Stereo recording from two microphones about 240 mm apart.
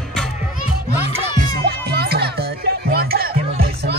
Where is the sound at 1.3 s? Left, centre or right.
Right.